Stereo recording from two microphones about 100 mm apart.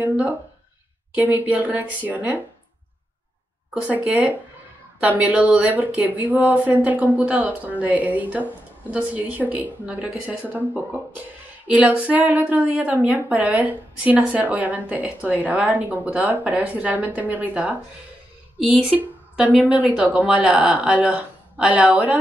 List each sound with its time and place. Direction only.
0.0 s a woman's voice: 15° right (ahead or behind)
3.7 s a woman's voice: 10° right (ahead or behind)
18.9 s a woman's voice: 15° right (ahead or behind)